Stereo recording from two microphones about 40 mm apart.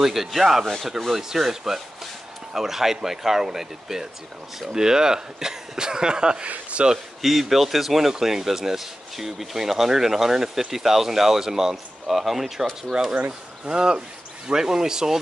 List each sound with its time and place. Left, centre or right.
0.0 s speech: centre
6.4 s speech: right
6.9 s speech: centre
13.7 s speech: right